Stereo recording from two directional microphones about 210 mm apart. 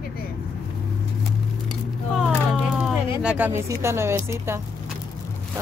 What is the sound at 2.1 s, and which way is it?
Speech, centre (ahead or behind).